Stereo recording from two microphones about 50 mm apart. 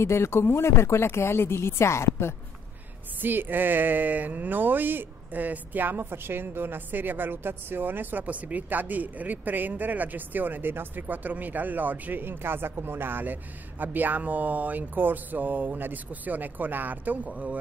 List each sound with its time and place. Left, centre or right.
0.0 s speech: left
3.2 s speech: right